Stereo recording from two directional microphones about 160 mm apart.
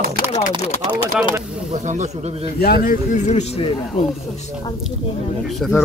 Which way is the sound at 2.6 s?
65° left (ahead or behind).